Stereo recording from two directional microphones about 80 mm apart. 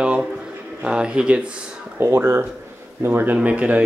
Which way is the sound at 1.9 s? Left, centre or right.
Right.